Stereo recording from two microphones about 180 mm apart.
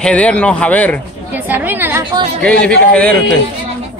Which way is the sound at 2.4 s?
5° left (ahead or behind).